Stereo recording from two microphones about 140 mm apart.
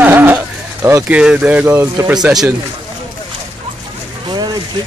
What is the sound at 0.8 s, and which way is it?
Speech, 10° right (ahead or behind).